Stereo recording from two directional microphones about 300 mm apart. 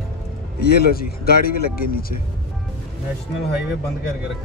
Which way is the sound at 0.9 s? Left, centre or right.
Left.